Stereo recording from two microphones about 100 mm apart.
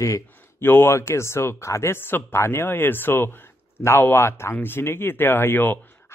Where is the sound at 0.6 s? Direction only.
20° left (ahead or behind).